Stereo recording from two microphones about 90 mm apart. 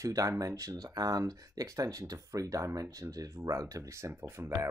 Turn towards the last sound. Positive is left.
turn(degrees=-30)  # may be behind; listen again after turning